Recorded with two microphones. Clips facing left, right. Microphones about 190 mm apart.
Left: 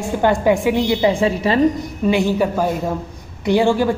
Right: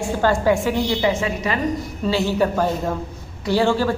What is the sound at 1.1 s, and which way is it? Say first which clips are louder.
Speech: left 5 dB; 30° left (ahead or behind).